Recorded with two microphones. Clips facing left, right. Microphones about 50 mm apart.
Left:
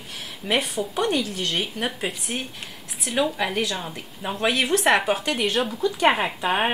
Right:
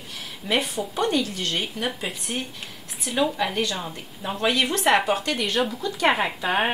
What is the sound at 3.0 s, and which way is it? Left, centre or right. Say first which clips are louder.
Speech: even; centre.